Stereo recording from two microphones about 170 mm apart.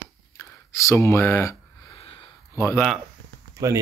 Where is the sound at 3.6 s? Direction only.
20° right (ahead or behind).